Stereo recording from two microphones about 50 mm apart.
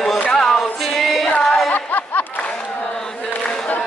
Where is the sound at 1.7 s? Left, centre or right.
Left.